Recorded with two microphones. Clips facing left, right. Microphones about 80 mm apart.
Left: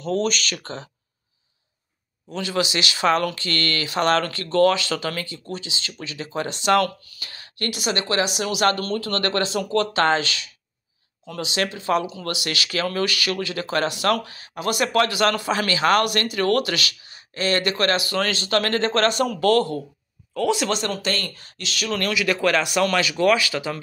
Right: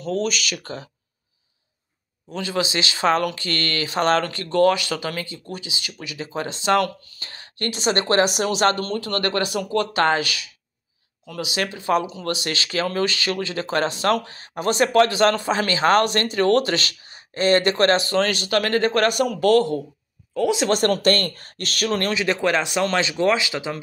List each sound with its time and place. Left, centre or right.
0.0 s speech: centre
2.3 s speech: right
7.9 s speech: right
8.5 s speech: right
11.5 s speech: centre
20.7 s speech: right; by 23.8 s centre